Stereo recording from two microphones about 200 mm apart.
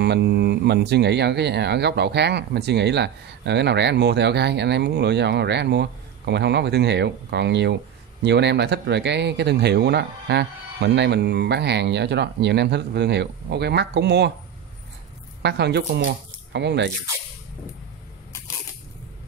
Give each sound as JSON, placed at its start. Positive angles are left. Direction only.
{"t": 0.0, "sound": "speech", "side_deg": -55}
{"t": 15.4, "sound": "speech", "side_deg": -55}